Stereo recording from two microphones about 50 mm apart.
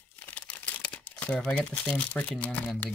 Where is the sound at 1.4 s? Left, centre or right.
Left.